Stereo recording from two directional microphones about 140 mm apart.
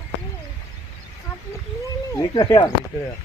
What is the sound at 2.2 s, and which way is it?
Speech, 30° left (ahead or behind).